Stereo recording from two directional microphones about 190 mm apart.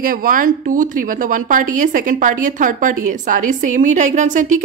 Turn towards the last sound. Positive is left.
turn(degrees=-45)  # may be behind; listen again after turning